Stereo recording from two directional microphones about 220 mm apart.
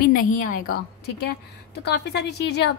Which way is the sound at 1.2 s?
50° left (ahead or behind).